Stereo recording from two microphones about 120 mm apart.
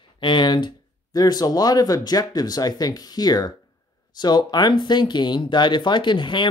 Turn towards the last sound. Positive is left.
turn(degrees=40)  # may be behind; listen again after turning